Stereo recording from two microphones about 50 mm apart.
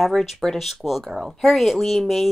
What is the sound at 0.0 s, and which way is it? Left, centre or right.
A woman's voice, centre.